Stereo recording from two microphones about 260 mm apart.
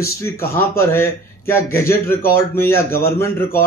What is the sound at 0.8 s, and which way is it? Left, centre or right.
Speech, centre.